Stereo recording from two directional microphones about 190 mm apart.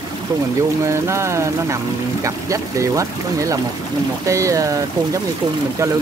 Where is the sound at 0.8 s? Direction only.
15° right (ahead or behind).